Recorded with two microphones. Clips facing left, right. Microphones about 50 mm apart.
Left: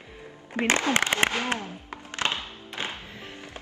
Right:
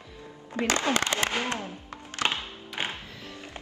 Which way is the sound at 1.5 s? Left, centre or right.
Left.